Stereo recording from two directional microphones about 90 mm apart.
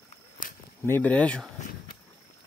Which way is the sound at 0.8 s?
25° left (ahead or behind).